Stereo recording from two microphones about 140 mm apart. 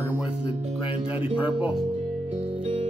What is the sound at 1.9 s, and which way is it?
Music, 55° right (ahead or behind).